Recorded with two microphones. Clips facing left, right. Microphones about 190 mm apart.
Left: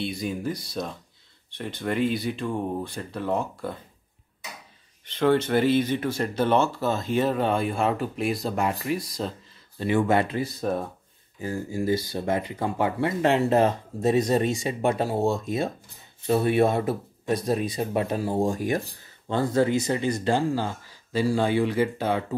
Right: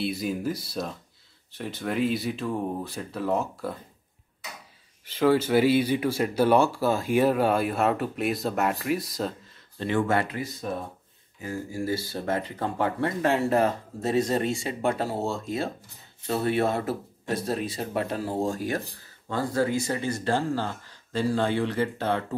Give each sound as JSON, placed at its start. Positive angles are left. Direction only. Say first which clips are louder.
{"t": 0.0, "sound": "speech", "louder": "right 1 dB", "side_deg": -5}
{"t": 5.0, "sound": "speech", "louder": "even", "side_deg": -5}
{"t": 9.8, "sound": "speech", "louder": "left 3 dB", "side_deg": 10}